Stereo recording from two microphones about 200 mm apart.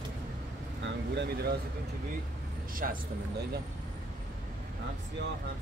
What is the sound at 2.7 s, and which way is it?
Speech, 45° right (ahead or behind).